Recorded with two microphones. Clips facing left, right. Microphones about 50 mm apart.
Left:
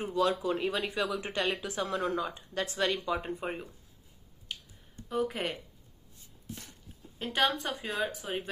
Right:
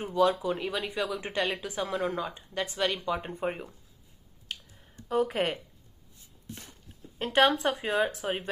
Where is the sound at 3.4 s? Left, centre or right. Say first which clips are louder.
Right 4 dB; centre.